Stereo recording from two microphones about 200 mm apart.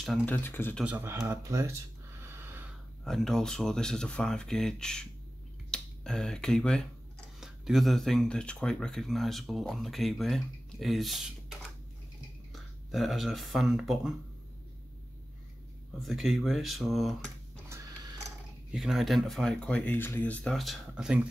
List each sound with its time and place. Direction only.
0.0 s speech: 5° left (ahead or behind)
0.8 s speech: 10° right (ahead or behind)
2.2 s a sound: 10° right (ahead or behind)
3.0 s speech: centre (ahead or behind)
16.0 s speech: centre (ahead or behind)
17.6 s a sound: 15° right (ahead or behind)
18.7 s speech: centre (ahead or behind)